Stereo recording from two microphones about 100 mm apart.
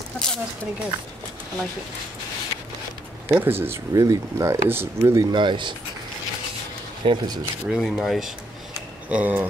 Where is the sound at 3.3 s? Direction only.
20° right (ahead or behind).